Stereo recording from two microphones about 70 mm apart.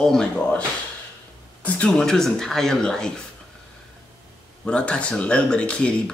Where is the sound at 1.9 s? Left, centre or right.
Centre.